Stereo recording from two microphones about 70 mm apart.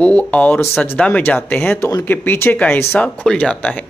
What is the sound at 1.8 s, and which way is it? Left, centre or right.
Speech, left.